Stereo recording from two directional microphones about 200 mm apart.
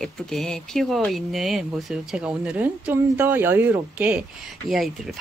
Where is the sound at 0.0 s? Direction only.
Centre (ahead or behind).